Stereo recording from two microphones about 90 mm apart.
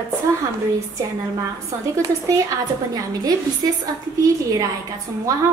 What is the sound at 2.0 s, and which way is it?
Speech, 40° right (ahead or behind).